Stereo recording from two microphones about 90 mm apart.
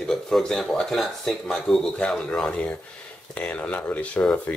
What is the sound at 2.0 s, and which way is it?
Speech, 15° left (ahead or behind).